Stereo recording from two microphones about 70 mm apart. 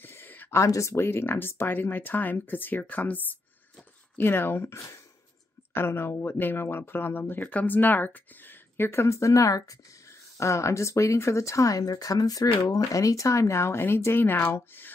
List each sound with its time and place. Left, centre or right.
0.0 s a sound: left
0.5 s speech: left
10.3 s speech: left